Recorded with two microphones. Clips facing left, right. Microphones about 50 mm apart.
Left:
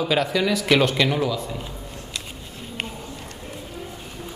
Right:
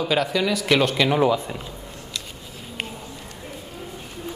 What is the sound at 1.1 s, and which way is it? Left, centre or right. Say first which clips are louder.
Speech: right 4 dB; right.